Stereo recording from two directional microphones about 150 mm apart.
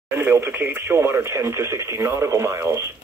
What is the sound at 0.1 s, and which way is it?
Speech, 15° right (ahead or behind).